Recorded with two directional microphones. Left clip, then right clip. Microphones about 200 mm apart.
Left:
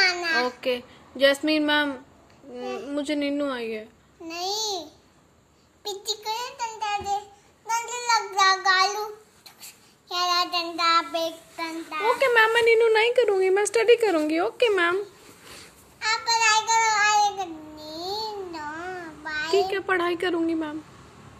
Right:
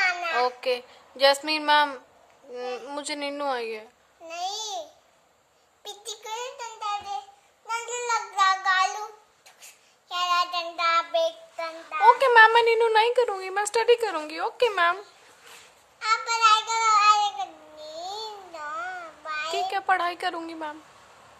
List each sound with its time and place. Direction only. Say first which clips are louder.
0.0 s child singing: left 2 dB; 10° right (ahead or behind)
2.5 s a child's voice: left 2 dB; 15° right (ahead or behind)
5.9 s a child's voice: left 6 dB; 10° right (ahead or behind)
7.6 s child singing: left 3 dB; 10° right (ahead or behind)
13.5 s speech: left 3 dB; centre (ahead or behind)
16.0 s child singing: right 1 dB; 15° right (ahead or behind)
17.8 s babbling: left 2 dB; 35° right (ahead or behind)
18.2 s a sound: left 4 dB; 10° right (ahead or behind)
19.3 s a child's voice: left 4 dB; 10° right (ahead or behind)